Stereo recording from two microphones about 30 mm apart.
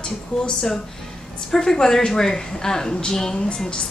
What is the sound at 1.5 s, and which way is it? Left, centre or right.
A woman's voice, centre.